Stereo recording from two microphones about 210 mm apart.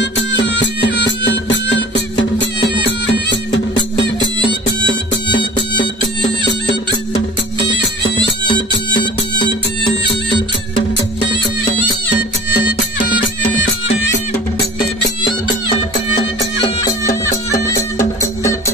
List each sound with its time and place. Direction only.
0.0 s music: 55° left (ahead or behind)
16.2 s music: 20° left (ahead or behind)